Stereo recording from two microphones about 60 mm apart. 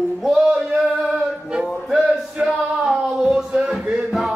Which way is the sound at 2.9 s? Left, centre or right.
Centre.